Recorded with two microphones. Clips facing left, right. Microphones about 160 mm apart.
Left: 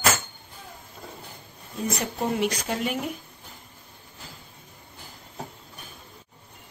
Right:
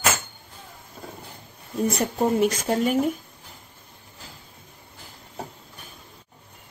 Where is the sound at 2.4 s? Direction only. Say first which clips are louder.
Right 5 dB; 40° right (ahead or behind).